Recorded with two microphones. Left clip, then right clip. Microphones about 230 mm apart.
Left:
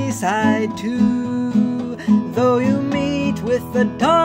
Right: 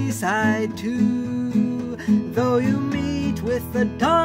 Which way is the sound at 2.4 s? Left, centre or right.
Centre.